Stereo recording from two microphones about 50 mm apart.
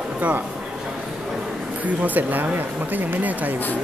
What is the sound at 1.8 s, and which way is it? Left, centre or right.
Speech, right.